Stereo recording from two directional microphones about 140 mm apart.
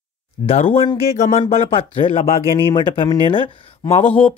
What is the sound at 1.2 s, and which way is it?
Speech, 55° left (ahead or behind).